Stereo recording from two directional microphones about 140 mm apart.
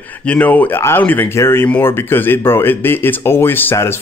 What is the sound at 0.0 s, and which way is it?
Speech, 10° left (ahead or behind).